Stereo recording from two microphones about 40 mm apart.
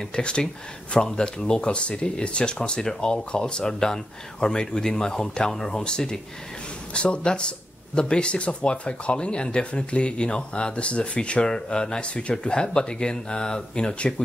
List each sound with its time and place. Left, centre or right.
0.1 s speech: left